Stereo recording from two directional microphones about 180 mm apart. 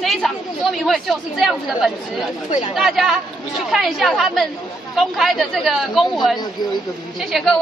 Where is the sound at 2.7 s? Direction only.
Centre (ahead or behind).